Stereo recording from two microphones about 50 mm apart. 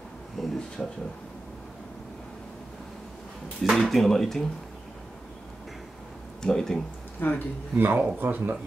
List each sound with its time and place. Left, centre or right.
0.4 s a sound: centre
0.8 s speech: centre
3.6 s speech: centre
6.4 s speech: centre
7.2 s speech: left
7.7 s speech: right